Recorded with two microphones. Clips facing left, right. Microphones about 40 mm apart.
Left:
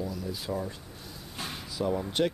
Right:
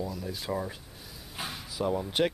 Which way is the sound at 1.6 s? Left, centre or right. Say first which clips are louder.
Even; centre.